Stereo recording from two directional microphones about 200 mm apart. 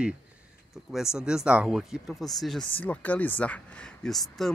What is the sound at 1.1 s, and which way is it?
Speech, 5° right (ahead or behind).